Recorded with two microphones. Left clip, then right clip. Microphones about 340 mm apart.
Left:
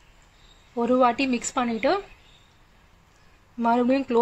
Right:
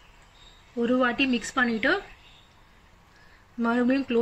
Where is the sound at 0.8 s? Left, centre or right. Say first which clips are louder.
Left 3 dB; centre.